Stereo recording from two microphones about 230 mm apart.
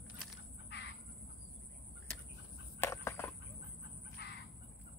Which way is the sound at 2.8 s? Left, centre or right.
Centre.